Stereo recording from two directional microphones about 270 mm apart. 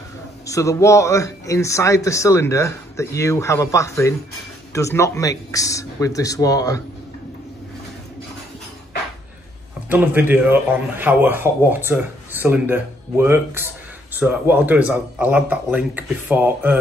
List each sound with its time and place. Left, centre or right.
0.5 s a man's voice: centre
9.8 s speech: centre